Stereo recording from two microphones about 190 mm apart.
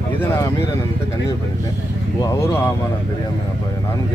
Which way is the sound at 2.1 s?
15° left (ahead or behind).